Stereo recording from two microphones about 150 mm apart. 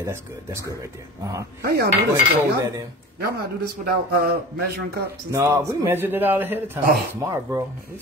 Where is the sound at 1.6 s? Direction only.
90° right.